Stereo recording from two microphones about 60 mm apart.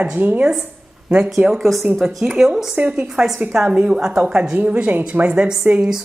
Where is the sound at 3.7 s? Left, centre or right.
Centre.